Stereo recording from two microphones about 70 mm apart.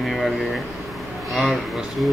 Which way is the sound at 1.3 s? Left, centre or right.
Centre.